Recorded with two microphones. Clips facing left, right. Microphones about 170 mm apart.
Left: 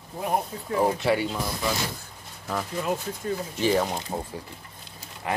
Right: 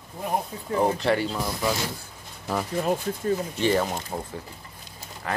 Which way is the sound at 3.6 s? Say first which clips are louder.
Left 2 dB; 5° left (ahead or behind).